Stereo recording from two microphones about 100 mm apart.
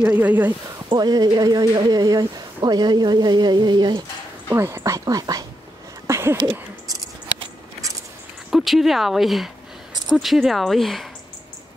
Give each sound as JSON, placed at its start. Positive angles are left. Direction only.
{"t": 0.0, "sound": "speech", "side_deg": -15}
{"t": 0.8, "sound": "speech", "side_deg": -45}
{"t": 4.5, "sound": "a woman's voice", "side_deg": -25}
{"t": 6.0, "sound": "a sound", "side_deg": -30}
{"t": 8.5, "sound": "speech", "side_deg": 0}